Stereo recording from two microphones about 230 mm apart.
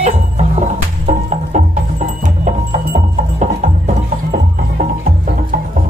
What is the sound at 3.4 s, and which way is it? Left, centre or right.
Music, right.